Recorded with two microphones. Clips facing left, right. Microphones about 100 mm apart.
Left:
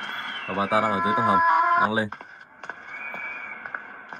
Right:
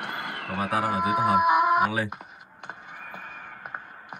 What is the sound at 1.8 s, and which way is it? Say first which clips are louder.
Speech: left 2 dB; 25° left (ahead or behind).